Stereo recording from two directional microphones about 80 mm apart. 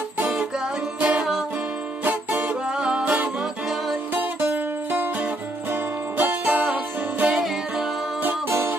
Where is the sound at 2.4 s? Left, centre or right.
Centre.